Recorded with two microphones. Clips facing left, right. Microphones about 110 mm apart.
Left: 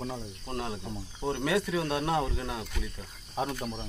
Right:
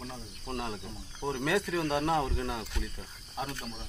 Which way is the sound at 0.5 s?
Centre (ahead or behind).